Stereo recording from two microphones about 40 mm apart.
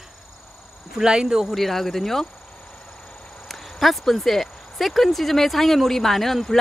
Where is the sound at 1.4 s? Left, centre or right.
Centre.